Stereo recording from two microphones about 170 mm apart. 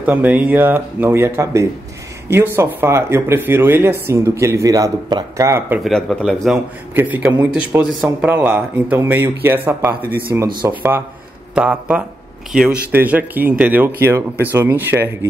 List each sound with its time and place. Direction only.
0.0 s speech: 10° right (ahead or behind)
5.9 s speech: centre (ahead or behind)
7.0 s speech: 10° right (ahead or behind)